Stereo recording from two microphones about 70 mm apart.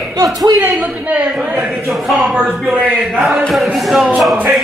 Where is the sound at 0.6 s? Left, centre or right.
Right.